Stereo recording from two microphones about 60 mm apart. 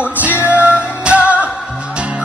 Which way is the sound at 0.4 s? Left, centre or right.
Right.